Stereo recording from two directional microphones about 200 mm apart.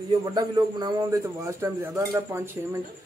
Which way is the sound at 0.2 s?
20° right (ahead or behind).